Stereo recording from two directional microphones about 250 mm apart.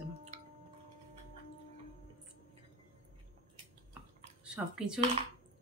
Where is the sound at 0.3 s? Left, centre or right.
Right.